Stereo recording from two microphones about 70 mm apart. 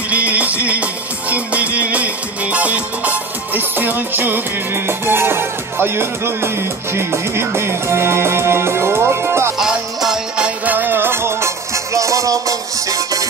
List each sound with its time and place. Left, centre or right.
0.1 s music: right
9.6 s music: centre; by 13.3 s right